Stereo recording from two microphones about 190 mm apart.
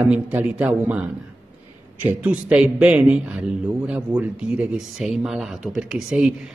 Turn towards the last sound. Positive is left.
turn(degrees=0)  # may be behind; listen again after turning